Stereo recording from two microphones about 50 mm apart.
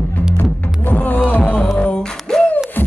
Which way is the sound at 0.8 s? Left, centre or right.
Left.